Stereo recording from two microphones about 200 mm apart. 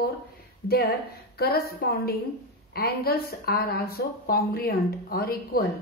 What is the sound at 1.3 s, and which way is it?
A woman's voice, 50° left (ahead or behind).